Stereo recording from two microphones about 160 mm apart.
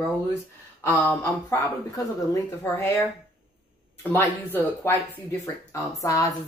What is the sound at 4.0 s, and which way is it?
Speech, 10° left (ahead or behind).